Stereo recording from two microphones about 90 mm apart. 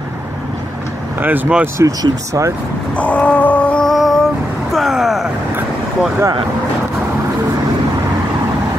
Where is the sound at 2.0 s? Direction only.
40° right (ahead or behind).